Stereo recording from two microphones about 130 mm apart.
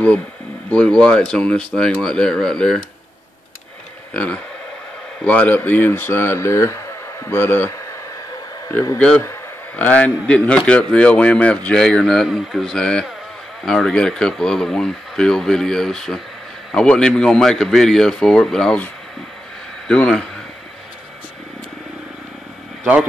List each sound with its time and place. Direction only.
0.7 s speech: 5° left (ahead or behind)
4.1 s a man's voice: 10° left (ahead or behind)
8.9 s a man's voice: 10° left (ahead or behind)
19.9 s a man's voice: 10° left (ahead or behind)